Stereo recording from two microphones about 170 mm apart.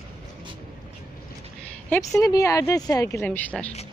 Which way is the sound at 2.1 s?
20° left (ahead or behind).